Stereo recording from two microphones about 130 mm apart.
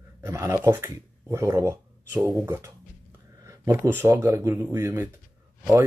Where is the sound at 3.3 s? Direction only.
25° right (ahead or behind).